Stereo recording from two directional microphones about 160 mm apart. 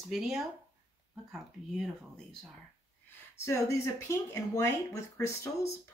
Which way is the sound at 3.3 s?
15° left (ahead or behind).